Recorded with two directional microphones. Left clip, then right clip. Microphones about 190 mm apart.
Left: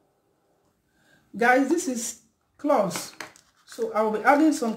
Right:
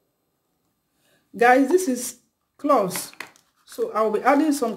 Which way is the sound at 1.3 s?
40° right (ahead or behind).